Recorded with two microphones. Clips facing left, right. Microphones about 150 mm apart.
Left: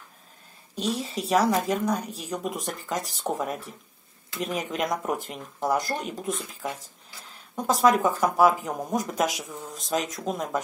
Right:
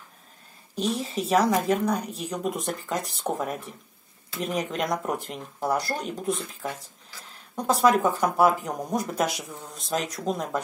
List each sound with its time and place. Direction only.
1.3 s speech: centre (ahead or behind)
6.6 s speech: 15° left (ahead or behind)
7.5 s speech: centre (ahead or behind)